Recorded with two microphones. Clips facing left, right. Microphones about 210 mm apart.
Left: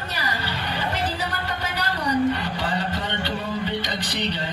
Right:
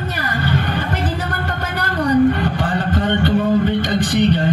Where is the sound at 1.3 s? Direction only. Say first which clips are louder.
Right 5 dB; 50° right (ahead or behind).